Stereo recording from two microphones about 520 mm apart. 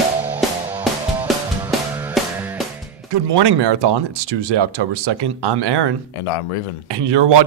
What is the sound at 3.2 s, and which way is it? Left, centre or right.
Speech, right.